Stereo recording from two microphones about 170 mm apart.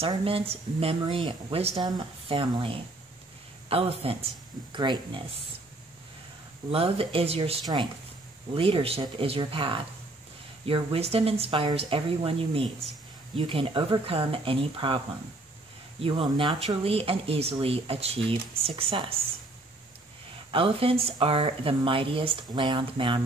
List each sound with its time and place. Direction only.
0.0 s speech: 35° right (ahead or behind)
6.7 s speech: 35° right (ahead or behind)
16.0 s speech: 30° right (ahead or behind)
20.5 s speech: 35° right (ahead or behind)